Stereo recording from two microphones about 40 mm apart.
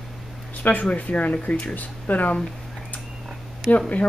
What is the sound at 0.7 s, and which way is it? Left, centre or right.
Speech, left.